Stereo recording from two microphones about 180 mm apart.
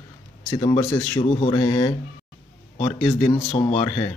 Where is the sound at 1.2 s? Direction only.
35° left (ahead or behind).